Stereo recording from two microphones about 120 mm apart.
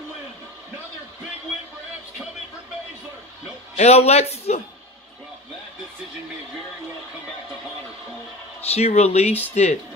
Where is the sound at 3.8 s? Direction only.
60° left (ahead or behind).